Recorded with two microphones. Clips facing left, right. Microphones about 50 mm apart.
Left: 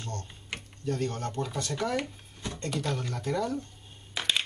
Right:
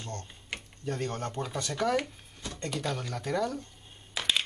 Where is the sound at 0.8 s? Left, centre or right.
Right.